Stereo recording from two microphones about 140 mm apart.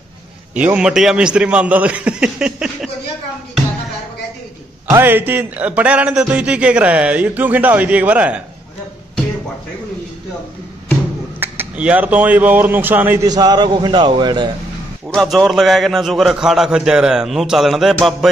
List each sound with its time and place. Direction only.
0.6 s a man's voice: 10° right (ahead or behind)
4.8 s a man's voice: 15° right (ahead or behind)
11.3 s speech: 15° right (ahead or behind)
13.2 s a man's voice: 25° right (ahead or behind)
15.1 s a man's voice: centre (ahead or behind)